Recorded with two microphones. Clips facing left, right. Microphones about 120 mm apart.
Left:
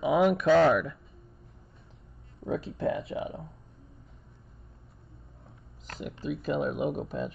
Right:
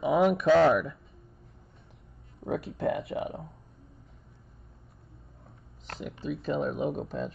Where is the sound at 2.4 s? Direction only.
70° right (ahead or behind).